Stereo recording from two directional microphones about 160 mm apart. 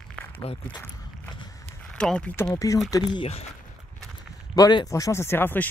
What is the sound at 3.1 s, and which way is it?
Speech, 40° left (ahead or behind).